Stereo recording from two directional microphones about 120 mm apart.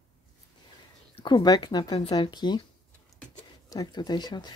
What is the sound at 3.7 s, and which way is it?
Speech, 35° left (ahead or behind).